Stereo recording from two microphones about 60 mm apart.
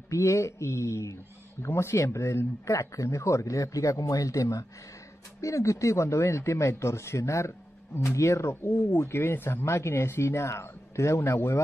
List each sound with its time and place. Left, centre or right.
0.1 s a man's voice: left